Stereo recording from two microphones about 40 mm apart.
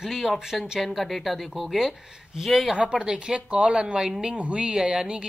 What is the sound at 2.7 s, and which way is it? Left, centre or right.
A woman's voice, right.